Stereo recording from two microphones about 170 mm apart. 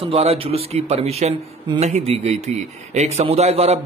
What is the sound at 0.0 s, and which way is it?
Speech, 35° right (ahead or behind).